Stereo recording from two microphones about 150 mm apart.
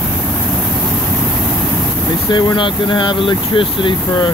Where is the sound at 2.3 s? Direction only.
30° left (ahead or behind).